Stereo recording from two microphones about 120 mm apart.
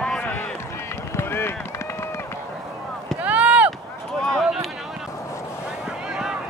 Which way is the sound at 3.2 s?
10° right (ahead or behind).